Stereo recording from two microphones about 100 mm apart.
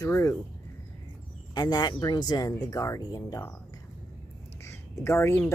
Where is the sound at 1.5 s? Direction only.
45° left (ahead or behind).